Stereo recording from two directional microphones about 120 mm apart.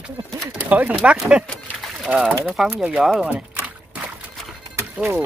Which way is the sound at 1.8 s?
5° right (ahead or behind).